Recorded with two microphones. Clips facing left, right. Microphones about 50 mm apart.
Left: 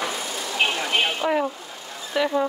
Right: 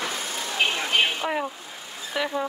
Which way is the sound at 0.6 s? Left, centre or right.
Centre.